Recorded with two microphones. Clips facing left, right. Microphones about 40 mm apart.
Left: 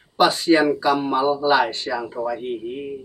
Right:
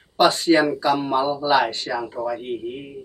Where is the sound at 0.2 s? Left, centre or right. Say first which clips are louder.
Even; centre.